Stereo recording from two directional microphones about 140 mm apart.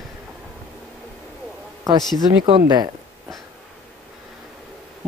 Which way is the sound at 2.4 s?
35° right (ahead or behind).